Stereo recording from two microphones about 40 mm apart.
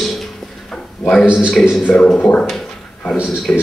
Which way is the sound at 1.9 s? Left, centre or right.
Left.